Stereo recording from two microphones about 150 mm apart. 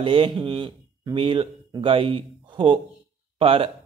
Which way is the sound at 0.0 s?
35° right (ahead or behind).